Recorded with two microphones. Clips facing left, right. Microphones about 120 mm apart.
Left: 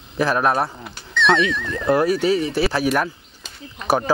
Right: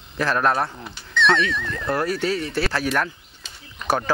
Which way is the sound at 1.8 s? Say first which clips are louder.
Left 6 dB; 15° left (ahead or behind).